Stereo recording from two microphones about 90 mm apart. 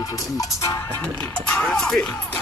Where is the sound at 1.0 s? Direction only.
20° left (ahead or behind).